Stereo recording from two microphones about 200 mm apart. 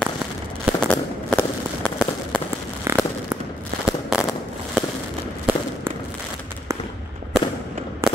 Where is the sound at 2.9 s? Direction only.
10° right (ahead or behind).